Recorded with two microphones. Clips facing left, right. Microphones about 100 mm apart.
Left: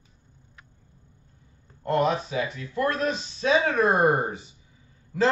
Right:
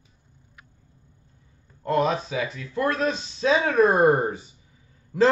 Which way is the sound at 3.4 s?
30° right (ahead or behind).